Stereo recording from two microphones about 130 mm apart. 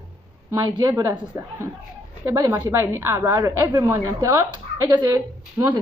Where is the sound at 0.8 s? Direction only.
25° right (ahead or behind).